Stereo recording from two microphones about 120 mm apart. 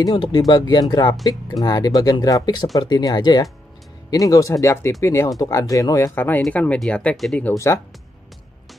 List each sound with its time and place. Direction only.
0.0 s speech: 40° left (ahead or behind); by 7.4 s 5° left (ahead or behind)
7.5 s speech: 25° left (ahead or behind)